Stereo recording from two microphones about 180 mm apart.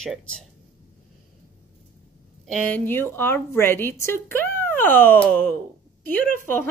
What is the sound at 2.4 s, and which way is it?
A woman's voice, 5° left (ahead or behind).